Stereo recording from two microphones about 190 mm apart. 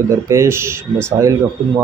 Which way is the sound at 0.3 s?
15° right (ahead or behind).